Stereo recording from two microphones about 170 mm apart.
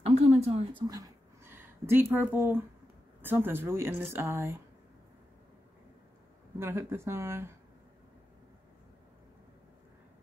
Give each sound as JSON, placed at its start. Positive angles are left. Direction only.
{"t": 0.0, "sound": "a sound", "side_deg": -35}
{"t": 0.8, "sound": "speech", "side_deg": -20}
{"t": 6.6, "sound": "speech", "side_deg": -15}